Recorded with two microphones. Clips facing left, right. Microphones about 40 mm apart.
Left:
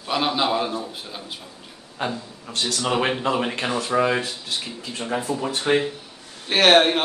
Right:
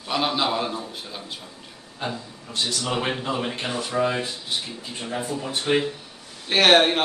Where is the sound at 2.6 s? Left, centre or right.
Left.